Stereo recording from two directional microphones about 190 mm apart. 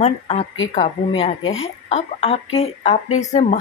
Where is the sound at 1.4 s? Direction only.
90° left.